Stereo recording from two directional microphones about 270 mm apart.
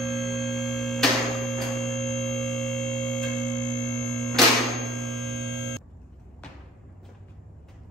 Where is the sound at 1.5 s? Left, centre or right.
Centre.